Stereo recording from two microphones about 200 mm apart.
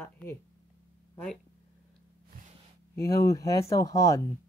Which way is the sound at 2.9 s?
15° left (ahead or behind).